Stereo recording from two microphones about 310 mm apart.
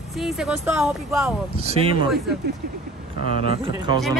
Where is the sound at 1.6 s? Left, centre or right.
Centre.